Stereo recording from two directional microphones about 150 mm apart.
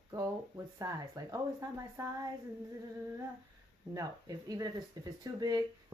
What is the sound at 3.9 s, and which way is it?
Speech, 25° right (ahead or behind).